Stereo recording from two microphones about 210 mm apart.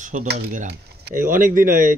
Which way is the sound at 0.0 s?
35° right (ahead or behind).